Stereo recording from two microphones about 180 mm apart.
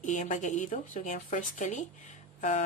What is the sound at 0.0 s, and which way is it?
Speech, 40° left (ahead or behind).